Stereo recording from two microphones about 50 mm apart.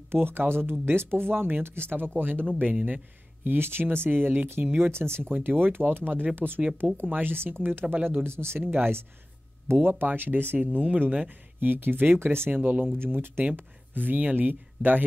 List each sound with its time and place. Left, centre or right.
0.1 s speech: right
3.4 s speech: right
4.7 s speech: right
5.3 s speech: right
8.3 s speech: right
8.6 s speech: right
12.4 s speech: right
13.0 s speech: right
13.6 s speech: right